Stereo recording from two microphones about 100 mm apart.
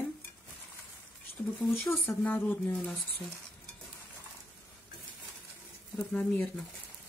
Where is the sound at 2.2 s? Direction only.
15° left (ahead or behind).